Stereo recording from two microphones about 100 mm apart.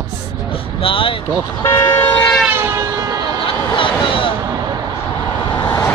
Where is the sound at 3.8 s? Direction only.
60° left (ahead or behind).